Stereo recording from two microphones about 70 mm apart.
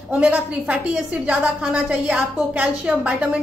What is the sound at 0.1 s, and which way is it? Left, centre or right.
A woman's voice, centre.